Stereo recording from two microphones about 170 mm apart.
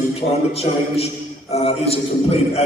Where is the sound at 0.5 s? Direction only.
35° left (ahead or behind).